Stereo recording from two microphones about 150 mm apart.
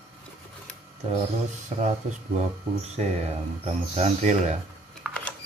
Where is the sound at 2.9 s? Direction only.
45° right (ahead or behind).